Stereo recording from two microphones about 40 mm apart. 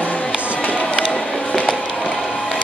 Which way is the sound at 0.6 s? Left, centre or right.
Left.